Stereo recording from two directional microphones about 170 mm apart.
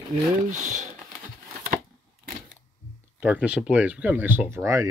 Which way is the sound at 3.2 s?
5° right (ahead or behind).